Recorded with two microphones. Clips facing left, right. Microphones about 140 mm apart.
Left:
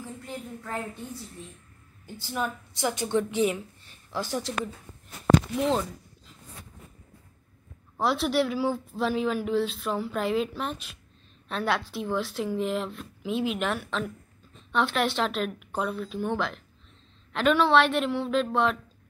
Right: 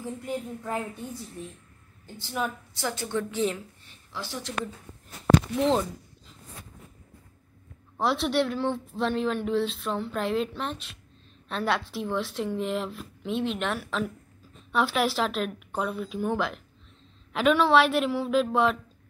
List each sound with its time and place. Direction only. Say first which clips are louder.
0.0 s a woman's voice: right 5 dB; 15° right (ahead or behind)
2.7 s a woman's voice: left 4 dB; 15° left (ahead or behind)
4.1 s speech: left 5 dB; 45° left (ahead or behind)
5.6 s speech: right 2 dB; centre (ahead or behind)
8.0 s speech: even; centre (ahead or behind)